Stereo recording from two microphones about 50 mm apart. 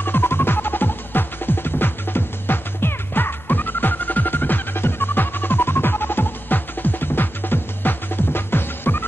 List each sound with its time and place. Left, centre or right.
0.0 s music: left